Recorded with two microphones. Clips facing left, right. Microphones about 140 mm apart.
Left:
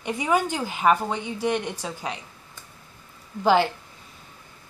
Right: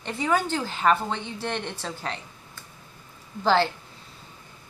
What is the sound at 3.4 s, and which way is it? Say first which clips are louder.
Speech: left 2 dB; 15° left (ahead or behind).